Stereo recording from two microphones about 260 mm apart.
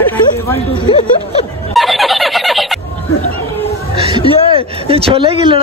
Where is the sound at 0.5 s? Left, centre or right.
Centre.